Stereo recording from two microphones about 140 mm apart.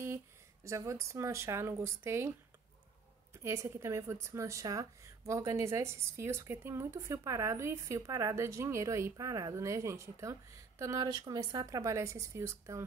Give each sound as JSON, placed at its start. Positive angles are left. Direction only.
{"t": 0.7, "sound": "a woman's voice", "side_deg": -20}
{"t": 3.4, "sound": "a woman's voice", "side_deg": -20}